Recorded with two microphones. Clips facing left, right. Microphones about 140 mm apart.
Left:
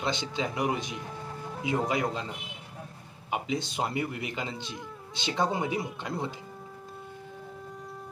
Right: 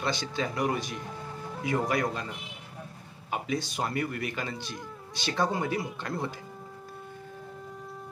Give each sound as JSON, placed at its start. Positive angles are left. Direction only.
{"t": 0.0, "sound": "speech", "side_deg": 20}
{"t": 3.3, "sound": "speech", "side_deg": 20}